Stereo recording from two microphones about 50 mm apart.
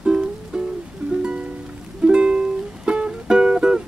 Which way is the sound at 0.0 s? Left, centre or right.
Centre.